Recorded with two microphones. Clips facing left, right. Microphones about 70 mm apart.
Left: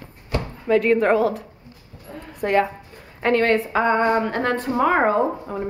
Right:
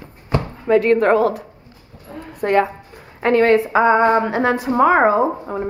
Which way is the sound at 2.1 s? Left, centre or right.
Centre.